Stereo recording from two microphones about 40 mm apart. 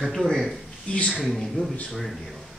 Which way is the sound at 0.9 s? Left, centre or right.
Left.